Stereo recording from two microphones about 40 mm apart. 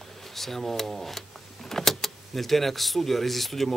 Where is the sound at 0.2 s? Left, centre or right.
Centre.